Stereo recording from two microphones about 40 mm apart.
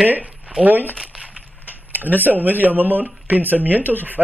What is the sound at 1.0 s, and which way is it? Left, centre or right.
Crumpling, centre.